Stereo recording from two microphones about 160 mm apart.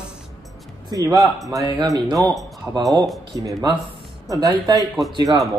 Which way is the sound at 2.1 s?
Centre (ahead or behind).